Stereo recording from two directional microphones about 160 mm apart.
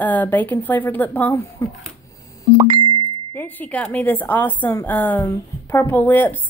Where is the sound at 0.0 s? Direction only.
10° left (ahead or behind).